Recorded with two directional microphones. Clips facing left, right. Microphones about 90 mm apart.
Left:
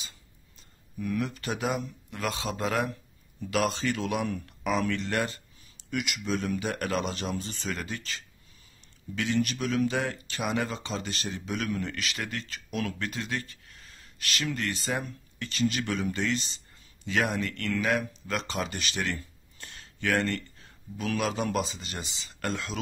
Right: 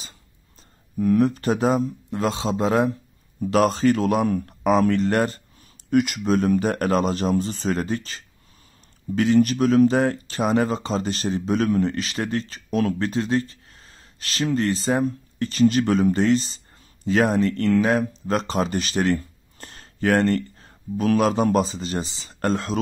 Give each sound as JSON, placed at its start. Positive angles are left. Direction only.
{"t": 0.9, "sound": "speech", "side_deg": -40}
{"t": 3.3, "sound": "speech", "side_deg": -40}